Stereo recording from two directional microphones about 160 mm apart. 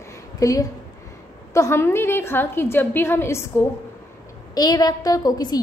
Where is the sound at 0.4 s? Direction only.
20° left (ahead or behind).